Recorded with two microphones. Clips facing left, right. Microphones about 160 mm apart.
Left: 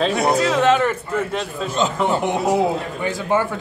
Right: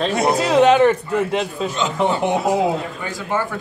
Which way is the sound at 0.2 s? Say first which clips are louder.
Right 6 dB; 15° right (ahead or behind).